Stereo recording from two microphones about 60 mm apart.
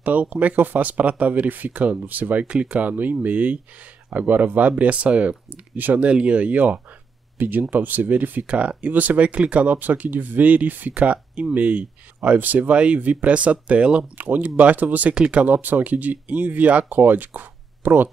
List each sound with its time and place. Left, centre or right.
0.0 s speech: right
14.1 s speech: right